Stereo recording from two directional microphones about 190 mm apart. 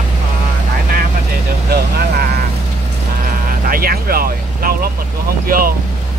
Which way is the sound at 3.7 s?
50° right (ahead or behind).